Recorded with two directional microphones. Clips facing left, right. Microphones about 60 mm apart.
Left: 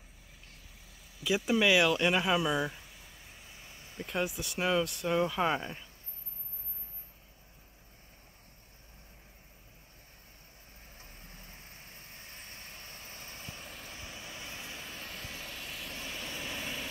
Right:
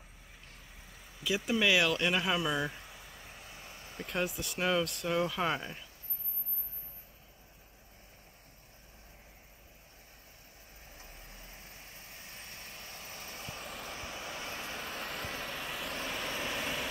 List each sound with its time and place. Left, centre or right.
1.2 s speech: centre
2.9 s vehicle: right
4.0 s speech: centre
11.0 s vehicle: centre
13.8 s vehicle: right
14.8 s vehicle: centre
16.1 s vehicle: centre